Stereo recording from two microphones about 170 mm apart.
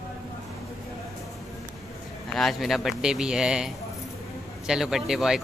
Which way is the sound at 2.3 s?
Centre (ahead or behind).